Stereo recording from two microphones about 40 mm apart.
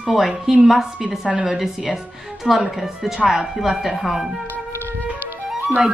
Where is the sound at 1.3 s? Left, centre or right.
Right.